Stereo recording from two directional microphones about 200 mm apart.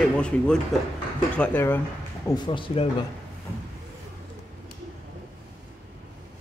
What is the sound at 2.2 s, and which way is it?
Speech, 25° left (ahead or behind).